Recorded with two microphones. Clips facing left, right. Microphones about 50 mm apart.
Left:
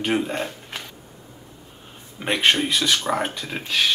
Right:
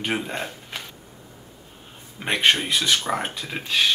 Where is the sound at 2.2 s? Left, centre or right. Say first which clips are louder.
Left 1 dB; centre.